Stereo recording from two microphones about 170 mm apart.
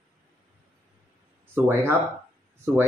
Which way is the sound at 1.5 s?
10° right (ahead or behind).